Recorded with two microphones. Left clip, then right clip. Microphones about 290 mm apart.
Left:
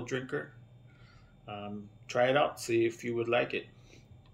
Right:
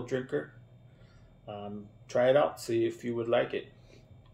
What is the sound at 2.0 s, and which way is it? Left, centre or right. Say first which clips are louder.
Speech: right 2 dB; centre.